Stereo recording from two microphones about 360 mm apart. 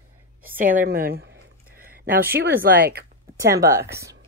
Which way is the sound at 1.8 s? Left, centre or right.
Right.